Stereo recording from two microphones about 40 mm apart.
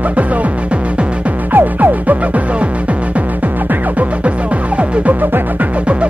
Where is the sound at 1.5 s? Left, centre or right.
Right.